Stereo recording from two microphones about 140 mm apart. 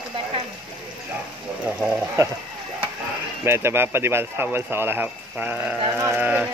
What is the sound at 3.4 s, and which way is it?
Speech, 20° right (ahead or behind).